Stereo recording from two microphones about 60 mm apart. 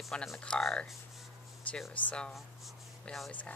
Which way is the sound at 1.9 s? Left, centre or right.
Centre.